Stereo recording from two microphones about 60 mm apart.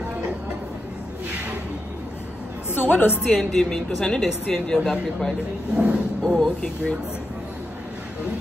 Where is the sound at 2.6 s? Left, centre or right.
Left.